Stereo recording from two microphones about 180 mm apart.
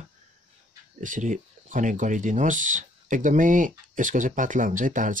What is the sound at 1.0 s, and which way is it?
Speech, 45° right (ahead or behind).